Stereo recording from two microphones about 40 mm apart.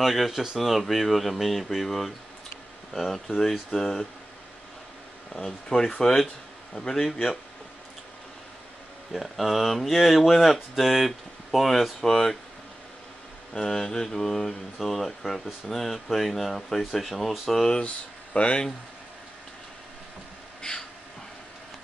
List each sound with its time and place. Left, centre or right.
0.0 s speech: centre
0.3 s speech: centre
2.9 s mantra: centre
5.7 s speech: left
6.7 s mantra: centre
9.1 s speech: centre
12.1 s mantra: centre
13.5 s mantra: centre
14.9 s speech: centre
17.8 s speech: left